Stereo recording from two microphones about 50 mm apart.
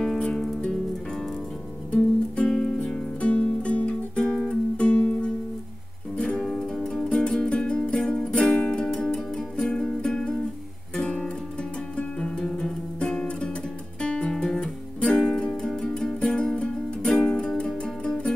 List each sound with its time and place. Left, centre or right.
1.9 s music: centre
14.0 s guitar: left
15.1 s music: centre